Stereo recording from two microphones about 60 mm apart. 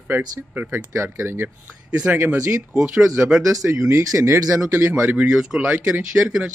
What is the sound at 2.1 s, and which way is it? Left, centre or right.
Speech, right.